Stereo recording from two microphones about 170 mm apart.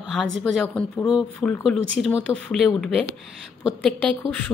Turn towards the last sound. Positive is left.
turn(degrees=5)  # may be behind; listen again after turning